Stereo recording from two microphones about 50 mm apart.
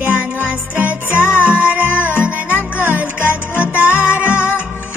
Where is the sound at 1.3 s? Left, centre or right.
Right.